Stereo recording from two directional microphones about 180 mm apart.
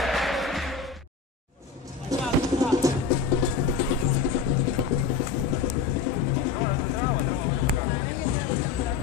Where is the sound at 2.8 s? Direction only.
20° right (ahead or behind).